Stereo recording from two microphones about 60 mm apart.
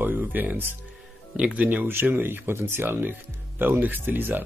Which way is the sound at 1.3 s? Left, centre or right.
Centre.